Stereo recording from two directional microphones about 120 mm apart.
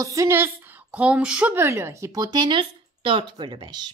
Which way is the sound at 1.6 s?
20° right (ahead or behind).